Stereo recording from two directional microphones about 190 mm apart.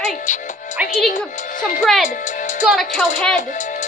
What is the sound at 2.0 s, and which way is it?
Music, 40° left (ahead or behind).